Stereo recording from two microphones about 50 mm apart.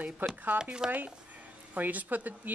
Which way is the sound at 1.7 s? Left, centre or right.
Right.